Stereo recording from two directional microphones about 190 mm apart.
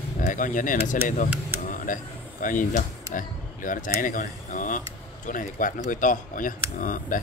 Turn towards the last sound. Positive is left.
turn(degrees=45)  # may be behind; listen again after turning